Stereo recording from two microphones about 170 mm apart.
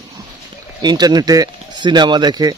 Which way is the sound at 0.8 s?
25° right (ahead or behind).